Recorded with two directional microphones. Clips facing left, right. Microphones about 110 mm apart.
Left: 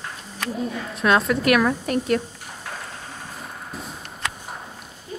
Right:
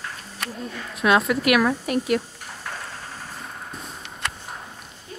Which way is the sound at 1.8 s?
35° left (ahead or behind).